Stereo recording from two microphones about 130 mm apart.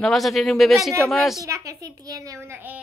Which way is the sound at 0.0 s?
Centre (ahead or behind).